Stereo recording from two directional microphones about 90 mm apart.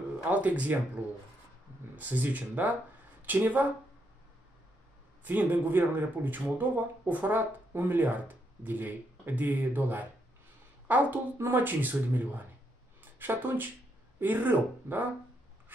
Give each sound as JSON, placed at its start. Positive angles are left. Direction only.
{"t": 0.3, "sound": "speech", "side_deg": -15}
{"t": 5.2, "sound": "speech", "side_deg": -20}